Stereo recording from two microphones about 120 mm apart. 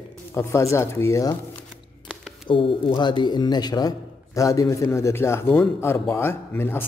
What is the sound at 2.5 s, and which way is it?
A man's voice, 40° left (ahead or behind).